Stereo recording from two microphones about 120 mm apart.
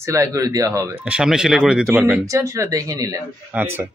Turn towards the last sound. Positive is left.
turn(degrees=-15)  # may be behind; listen again after turning